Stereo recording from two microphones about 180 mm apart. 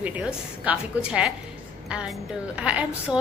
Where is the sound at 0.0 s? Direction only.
10° right (ahead or behind).